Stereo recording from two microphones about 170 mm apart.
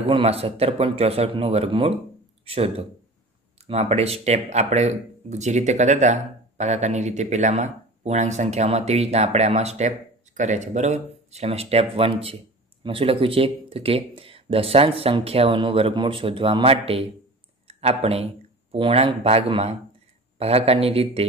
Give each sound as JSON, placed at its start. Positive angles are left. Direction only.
{"t": 0.1, "sound": "speech", "side_deg": -35}